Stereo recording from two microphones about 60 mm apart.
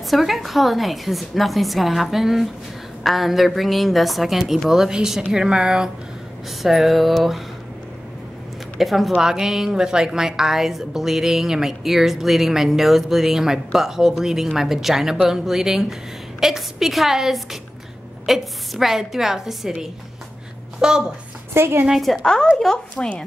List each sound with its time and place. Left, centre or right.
0.1 s a woman's voice: centre
6.6 s a woman's voice: centre
8.7 s a woman's voice: centre
21.5 s a woman's voice: right
21.8 s a woman's voice: centre
22.1 s a woman's voice: centre